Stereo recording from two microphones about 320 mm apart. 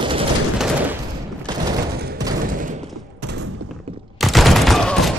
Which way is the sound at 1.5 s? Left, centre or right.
Centre.